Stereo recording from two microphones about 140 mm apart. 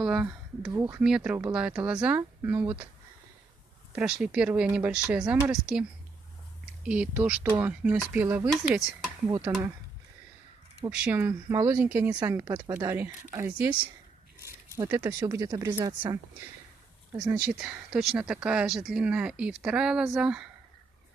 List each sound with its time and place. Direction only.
0.0 s a sound: 5° right (ahead or behind)
0.7 s speech: 15° right (ahead or behind)
3.9 s speech: 5° right (ahead or behind)
8.7 s speech: 5° right (ahead or behind)
9.5 s speech: 20° right (ahead or behind)
10.9 s speech: 15° right (ahead or behind)
12.2 s speech: 25° right (ahead or behind)
17.2 s speech: 10° right (ahead or behind)